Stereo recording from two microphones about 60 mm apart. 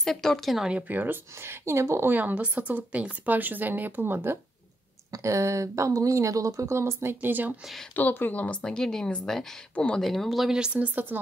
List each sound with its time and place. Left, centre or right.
0.0 s speech: centre
0.7 s speech: right
2.0 s speech: right
5.1 s speech: right
7.2 s speech: right
7.9 s speech: left; by 10.5 s centre
10.5 s a woman's voice: centre